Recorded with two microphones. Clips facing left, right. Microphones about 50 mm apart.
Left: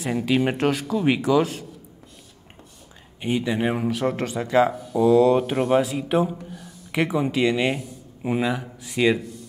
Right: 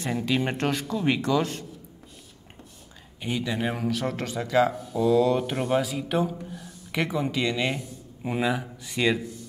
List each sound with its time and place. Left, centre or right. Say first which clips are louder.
0.0 s speech: left 4 dB; centre
3.2 s speech: left 5 dB; centre
4.7 s speech: left 5 dB; centre
6.3 s a sound: left 1 dB; centre
7.1 s speech: left 6 dB; centre